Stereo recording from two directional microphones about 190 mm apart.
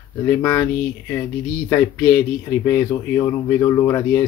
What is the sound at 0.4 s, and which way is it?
Speech, 15° left (ahead or behind).